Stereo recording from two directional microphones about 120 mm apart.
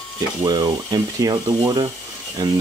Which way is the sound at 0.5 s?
35° right (ahead or behind).